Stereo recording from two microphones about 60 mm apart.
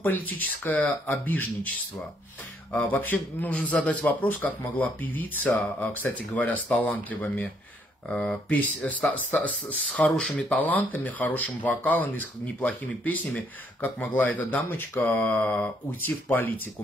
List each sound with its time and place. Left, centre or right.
0.0 s speech: left
2.7 s speech: left
8.1 s speech: centre
8.5 s speech: left